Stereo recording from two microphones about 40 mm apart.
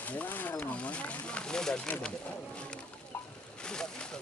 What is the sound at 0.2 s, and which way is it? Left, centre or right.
Wild animals, left.